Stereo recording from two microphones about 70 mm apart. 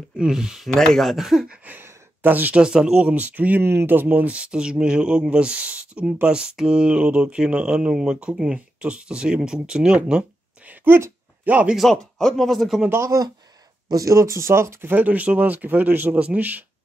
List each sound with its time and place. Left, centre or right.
0.2 s speech: centre
0.7 s speech: centre
1.1 s speech: centre
1.7 s a sound: right
2.6 s speech: centre
10.7 s a sound: right
11.4 s speech: right
11.7 s speech: centre
12.9 s speech: right
13.8 s speech: right
15.0 s speech: right